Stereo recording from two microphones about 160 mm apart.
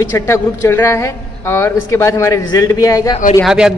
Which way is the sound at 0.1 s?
15° left (ahead or behind).